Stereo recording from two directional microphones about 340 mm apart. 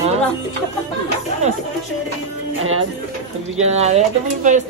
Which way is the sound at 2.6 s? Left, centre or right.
Right.